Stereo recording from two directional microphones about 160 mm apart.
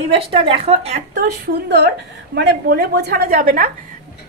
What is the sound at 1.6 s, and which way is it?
A woman's voice, 90° right.